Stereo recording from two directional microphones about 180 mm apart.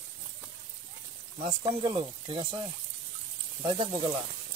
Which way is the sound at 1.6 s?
25° right (ahead or behind).